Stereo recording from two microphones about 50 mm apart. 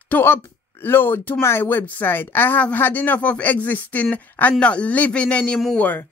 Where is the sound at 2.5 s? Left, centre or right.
Left.